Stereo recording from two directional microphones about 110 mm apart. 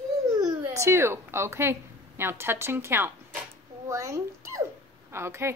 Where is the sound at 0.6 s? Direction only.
25° right (ahead or behind).